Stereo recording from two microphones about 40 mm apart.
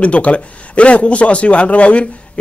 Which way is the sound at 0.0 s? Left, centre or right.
Left.